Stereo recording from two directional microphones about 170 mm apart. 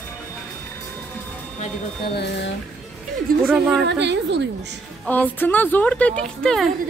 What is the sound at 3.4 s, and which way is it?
Speech, centre (ahead or behind).